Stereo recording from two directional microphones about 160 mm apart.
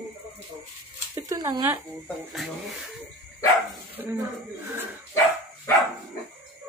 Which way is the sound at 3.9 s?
15° right (ahead or behind).